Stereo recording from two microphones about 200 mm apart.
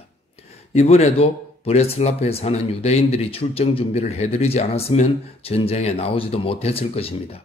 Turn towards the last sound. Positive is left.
turn(degrees=30)  # may be behind; listen again after turning